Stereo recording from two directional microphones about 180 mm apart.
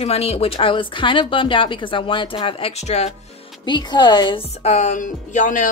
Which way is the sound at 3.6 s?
25° left (ahead or behind).